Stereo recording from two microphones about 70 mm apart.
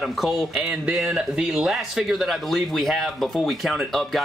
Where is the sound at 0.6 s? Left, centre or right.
Centre.